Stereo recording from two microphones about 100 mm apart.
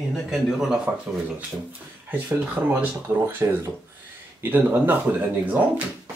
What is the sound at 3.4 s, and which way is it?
Speech, 30° right (ahead or behind).